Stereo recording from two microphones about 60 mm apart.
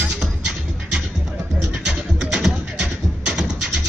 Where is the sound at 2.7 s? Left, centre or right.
Centre.